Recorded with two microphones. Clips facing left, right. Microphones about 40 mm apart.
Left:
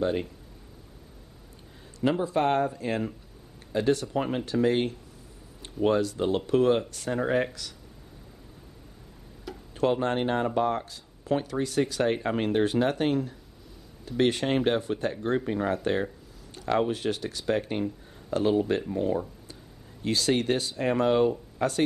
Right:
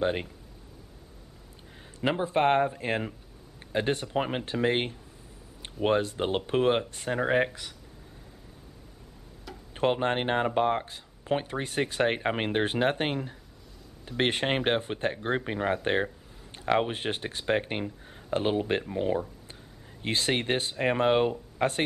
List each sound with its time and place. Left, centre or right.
0.0 s speech: right
2.0 s speech: right
9.8 s speech: right